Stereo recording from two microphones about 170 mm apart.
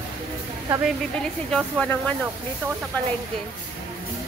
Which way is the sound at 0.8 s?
Centre (ahead or behind).